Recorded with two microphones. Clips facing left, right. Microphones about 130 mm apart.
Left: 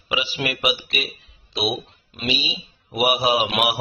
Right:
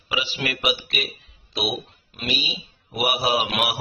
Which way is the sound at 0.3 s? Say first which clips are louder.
Even; 10° left (ahead or behind).